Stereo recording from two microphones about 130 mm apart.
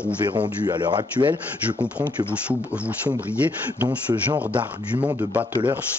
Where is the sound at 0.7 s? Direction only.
35° right (ahead or behind).